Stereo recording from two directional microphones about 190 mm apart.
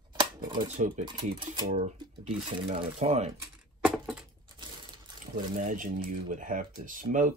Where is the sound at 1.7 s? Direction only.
40° right (ahead or behind).